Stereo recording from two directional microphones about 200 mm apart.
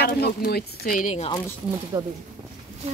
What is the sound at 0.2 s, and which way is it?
Speech, 50° left (ahead or behind).